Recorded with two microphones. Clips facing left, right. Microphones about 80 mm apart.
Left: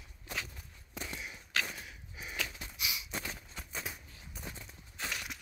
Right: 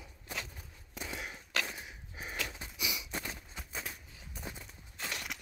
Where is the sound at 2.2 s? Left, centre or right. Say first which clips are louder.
Right 2 dB; right.